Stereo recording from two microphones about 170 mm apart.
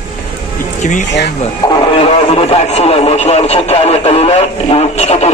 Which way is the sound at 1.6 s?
35° left (ahead or behind).